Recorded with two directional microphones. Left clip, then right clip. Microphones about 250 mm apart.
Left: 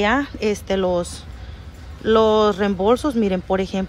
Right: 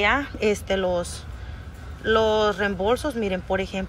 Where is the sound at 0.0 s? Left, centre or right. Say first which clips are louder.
Left 2 dB; centre.